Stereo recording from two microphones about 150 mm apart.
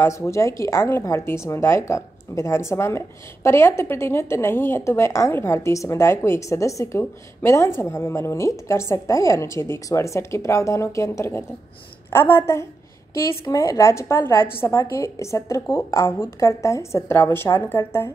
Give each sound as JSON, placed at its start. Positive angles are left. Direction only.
{"t": 0.0, "sound": "a woman's voice", "side_deg": 20}